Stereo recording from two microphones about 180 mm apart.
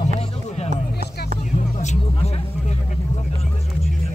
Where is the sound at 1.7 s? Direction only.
40° left (ahead or behind).